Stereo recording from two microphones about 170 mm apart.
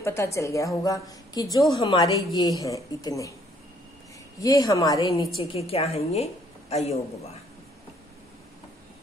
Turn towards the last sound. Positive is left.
turn(degrees=35)  # may be behind; listen again after turning